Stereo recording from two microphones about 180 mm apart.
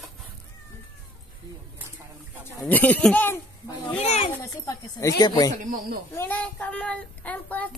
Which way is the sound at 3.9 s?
35° left (ahead or behind).